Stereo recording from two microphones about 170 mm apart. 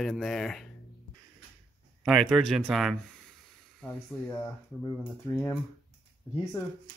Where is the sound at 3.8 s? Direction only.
10° left (ahead or behind).